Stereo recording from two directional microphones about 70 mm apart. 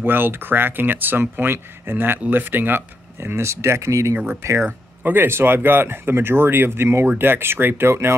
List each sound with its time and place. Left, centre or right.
0.0 s speech: right
4.6 s speech: right